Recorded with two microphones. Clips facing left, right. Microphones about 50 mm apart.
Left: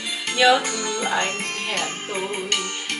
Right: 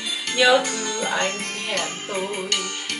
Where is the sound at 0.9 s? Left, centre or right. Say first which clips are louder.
Left 2 dB; centre.